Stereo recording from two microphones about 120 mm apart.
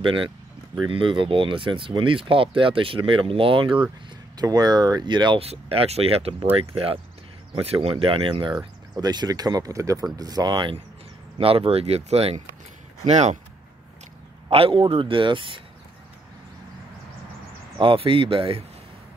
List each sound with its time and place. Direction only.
0.0 s speech: 45° right (ahead or behind)
4.4 s speech: 35° right (ahead or behind)
5.4 s speech: 55° right (ahead or behind); by 10.8 s 40° right (ahead or behind)
11.3 s speech: 50° right (ahead or behind); by 13.4 s 70° right (ahead or behind)
14.5 s speech: 50° right (ahead or behind)
17.7 s speech: 50° right (ahead or behind)